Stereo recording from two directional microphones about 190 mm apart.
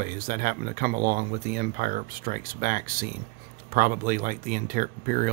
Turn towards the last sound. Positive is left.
turn(degrees=-50)  # may be behind; listen again after turning